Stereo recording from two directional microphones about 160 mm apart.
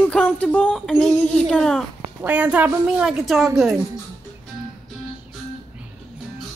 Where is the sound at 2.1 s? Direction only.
10° right (ahead or behind).